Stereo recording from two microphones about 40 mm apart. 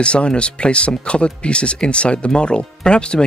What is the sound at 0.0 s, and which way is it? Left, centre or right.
Speech, left.